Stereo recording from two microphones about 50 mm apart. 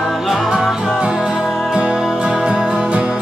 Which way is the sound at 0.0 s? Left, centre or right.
Centre.